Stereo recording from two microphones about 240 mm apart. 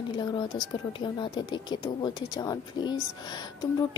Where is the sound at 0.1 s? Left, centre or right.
Centre.